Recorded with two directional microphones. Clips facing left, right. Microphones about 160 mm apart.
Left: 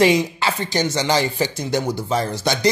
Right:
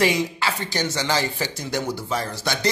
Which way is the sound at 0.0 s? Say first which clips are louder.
Left 5 dB; 20° left (ahead or behind).